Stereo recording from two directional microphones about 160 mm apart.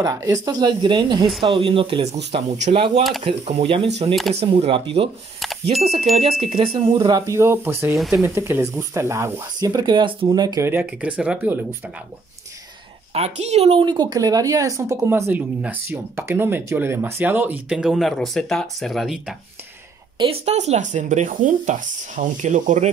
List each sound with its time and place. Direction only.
0.0 s speech: 20° right (ahead or behind)
2.3 s speech: 45° right (ahead or behind)
4.1 s speech: centre (ahead or behind)
4.4 s speech: 35° right (ahead or behind)
6.1 s speech: 40° right (ahead or behind)
7.1 s a woman's voice: 20° right (ahead or behind)
7.9 s speech: centre (ahead or behind)
8.2 s speech: 15° right (ahead or behind)
10.7 s a woman's voice: 10° right (ahead or behind)
13.1 s a woman's voice: 40° right (ahead or behind); by 19.3 s centre (ahead or behind)
20.2 s speech: 40° right (ahead or behind)